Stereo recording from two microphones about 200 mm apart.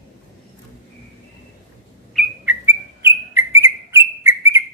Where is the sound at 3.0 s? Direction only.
10° right (ahead or behind).